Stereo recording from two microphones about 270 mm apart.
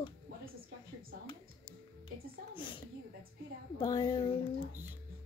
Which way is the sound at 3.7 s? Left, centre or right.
Centre.